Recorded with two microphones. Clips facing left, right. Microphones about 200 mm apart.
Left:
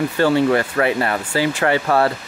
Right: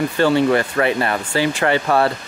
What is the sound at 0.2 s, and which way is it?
Speech, 25° right (ahead or behind).